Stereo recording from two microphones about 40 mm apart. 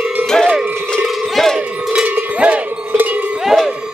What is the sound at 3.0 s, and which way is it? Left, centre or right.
Cowbell, right.